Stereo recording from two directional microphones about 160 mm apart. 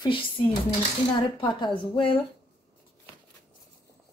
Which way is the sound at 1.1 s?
30° left (ahead or behind).